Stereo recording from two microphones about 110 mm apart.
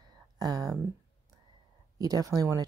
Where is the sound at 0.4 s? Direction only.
35° right (ahead or behind).